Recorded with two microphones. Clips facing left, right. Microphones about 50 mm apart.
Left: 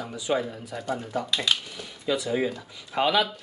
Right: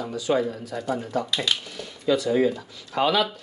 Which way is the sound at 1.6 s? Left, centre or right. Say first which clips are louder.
Right 5 dB; centre.